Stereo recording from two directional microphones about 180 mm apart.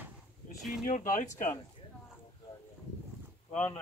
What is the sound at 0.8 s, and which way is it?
Speech, 45° left (ahead or behind).